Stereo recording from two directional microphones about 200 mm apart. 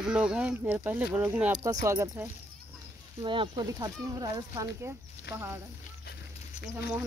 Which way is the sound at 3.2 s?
25° right (ahead or behind).